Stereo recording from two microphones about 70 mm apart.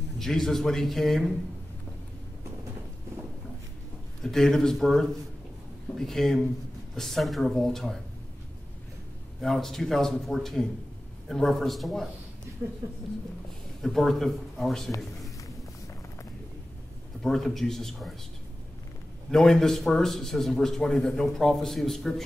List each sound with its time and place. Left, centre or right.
0.2 s a man's voice: centre
4.2 s a man's voice: centre
9.4 s a man's voice: centre
13.7 s a man's voice: centre
15.0 s a sound: centre
17.2 s a man's voice: centre
19.3 s a man's voice: centre